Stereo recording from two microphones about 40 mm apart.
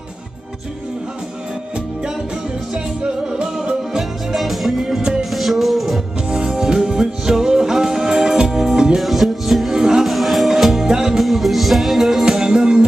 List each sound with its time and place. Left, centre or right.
2.7 s music: right
4.4 s music: centre
5.3 s music: centre
6.3 s music: centre
9.0 s music: centre
9.8 s music: centre
10.0 s music: centre
12.3 s music: centre